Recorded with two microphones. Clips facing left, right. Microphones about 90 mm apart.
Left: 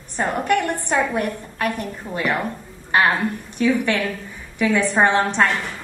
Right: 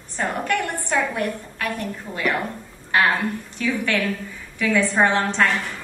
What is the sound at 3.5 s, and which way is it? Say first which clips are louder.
A woman's voice: left 5 dB; 20° left (ahead or behind).